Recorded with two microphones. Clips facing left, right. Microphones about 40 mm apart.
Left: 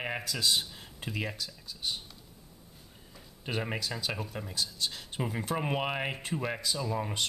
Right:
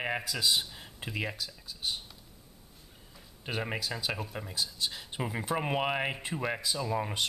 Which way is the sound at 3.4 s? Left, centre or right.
Centre.